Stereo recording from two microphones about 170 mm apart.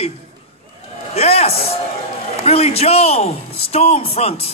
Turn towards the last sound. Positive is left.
turn(degrees=35)  # may be behind; listen again after turning